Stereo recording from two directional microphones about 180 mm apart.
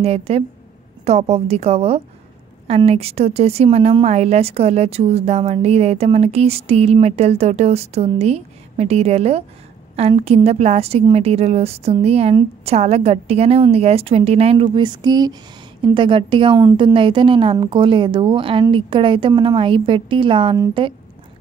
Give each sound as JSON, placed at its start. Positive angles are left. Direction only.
{"t": 0.0, "sound": "a woman's voice", "side_deg": -35}